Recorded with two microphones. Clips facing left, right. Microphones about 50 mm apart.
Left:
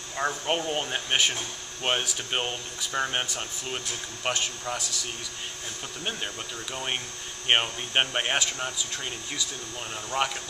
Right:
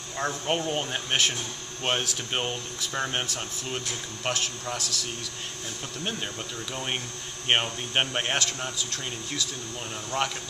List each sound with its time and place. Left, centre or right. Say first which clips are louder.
0.2 s speech: even; centre
6.0 s speech: even; centre
10.1 s speech: left 1 dB; centre